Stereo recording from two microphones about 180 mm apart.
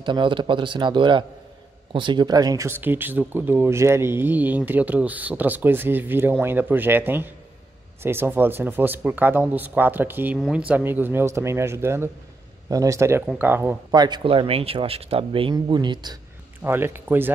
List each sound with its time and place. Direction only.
0.0 s speech: 25° right (ahead or behind); by 13.7 s 10° right (ahead or behind)
13.9 s speech: 25° right (ahead or behind)
16.6 s speech: 15° right (ahead or behind)